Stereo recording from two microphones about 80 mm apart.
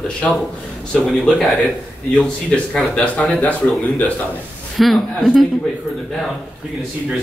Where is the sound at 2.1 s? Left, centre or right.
Centre.